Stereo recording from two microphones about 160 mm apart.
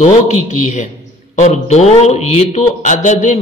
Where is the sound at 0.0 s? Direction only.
50° left (ahead or behind).